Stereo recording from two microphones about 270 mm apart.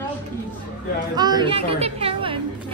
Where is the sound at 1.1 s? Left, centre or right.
Centre.